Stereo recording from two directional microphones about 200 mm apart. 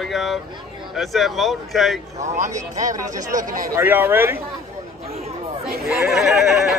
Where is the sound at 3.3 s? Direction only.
45° right (ahead or behind).